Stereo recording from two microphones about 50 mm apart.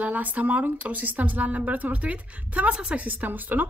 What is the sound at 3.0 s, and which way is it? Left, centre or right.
Speech, right.